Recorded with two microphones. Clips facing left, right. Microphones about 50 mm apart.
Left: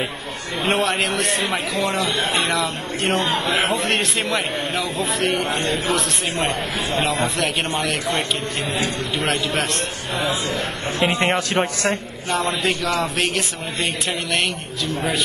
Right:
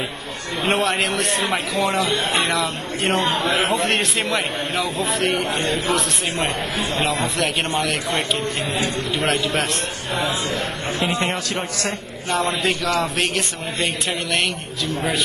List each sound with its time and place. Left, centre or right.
0.7 s a man's voice: centre
11.0 s speech: left
12.3 s a man's voice: centre
14.9 s a man's voice: centre